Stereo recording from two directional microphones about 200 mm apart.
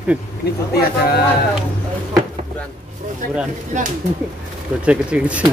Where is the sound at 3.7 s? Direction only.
40° right (ahead or behind).